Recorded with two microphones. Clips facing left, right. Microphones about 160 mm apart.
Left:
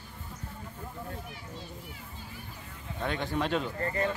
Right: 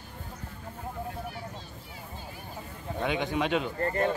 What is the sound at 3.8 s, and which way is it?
Speech, 50° right (ahead or behind).